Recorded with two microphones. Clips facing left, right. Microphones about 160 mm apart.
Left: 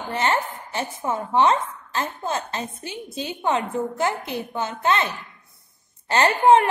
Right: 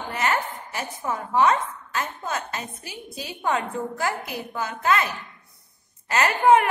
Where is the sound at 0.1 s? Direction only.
30° left (ahead or behind).